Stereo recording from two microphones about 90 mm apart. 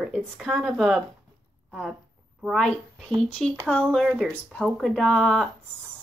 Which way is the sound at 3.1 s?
10° left (ahead or behind).